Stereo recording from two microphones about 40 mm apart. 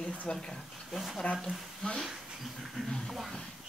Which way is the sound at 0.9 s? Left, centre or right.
Centre.